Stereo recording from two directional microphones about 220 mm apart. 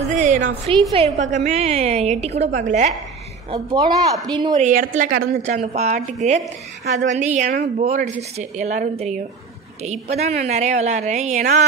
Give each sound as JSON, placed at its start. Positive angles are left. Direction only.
{"t": 0.1, "sound": "a woman's voice", "side_deg": -35}
{"t": 3.5, "sound": "speech", "side_deg": -15}
{"t": 4.6, "sound": "a woman's voice", "side_deg": -35}
{"t": 10.1, "sound": "a woman's voice", "side_deg": -30}